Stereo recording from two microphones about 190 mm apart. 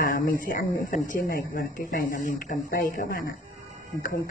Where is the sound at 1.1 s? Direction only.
50° left (ahead or behind).